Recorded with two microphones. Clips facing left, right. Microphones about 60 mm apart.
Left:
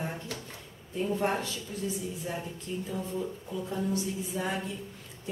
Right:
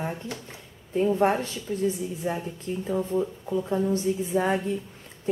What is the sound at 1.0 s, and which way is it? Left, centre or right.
A woman's voice, right.